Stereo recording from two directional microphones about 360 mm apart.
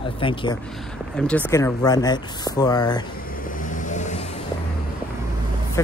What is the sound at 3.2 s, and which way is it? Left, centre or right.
Vehicle, left.